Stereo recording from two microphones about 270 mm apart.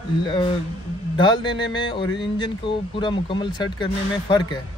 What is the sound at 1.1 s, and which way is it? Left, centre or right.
Speech, centre.